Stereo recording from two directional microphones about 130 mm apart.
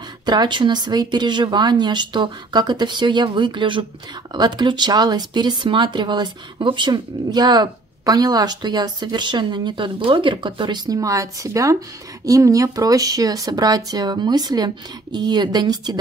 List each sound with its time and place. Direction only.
0.2 s speech: 35° right (ahead or behind)